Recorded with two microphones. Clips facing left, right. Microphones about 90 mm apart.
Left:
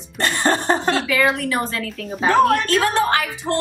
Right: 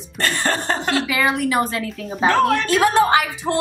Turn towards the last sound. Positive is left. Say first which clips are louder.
# right 2 dB
turn(degrees=-15)  # may be behind; listen again after turning